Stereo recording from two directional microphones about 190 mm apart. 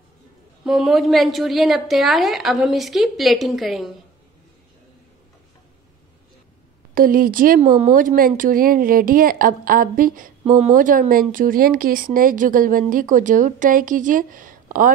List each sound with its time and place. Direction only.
0.7 s a woman's voice: centre (ahead or behind)
6.9 s speech: 50° right (ahead or behind)